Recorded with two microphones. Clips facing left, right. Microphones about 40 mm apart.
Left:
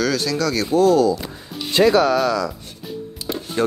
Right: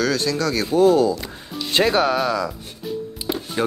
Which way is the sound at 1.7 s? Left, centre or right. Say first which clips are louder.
Left 3 dB; right.